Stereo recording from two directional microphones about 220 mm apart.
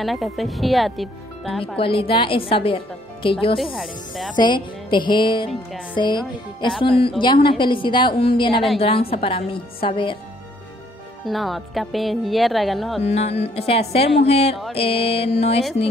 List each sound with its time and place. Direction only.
0.0 s speech: centre (ahead or behind)
1.8 s a woman's voice: 25° left (ahead or behind)
3.5 s speech: centre (ahead or behind)
4.4 s a woman's voice: 20° left (ahead or behind)
11.2 s speech: centre (ahead or behind)
13.0 s a woman's voice: 30° left (ahead or behind)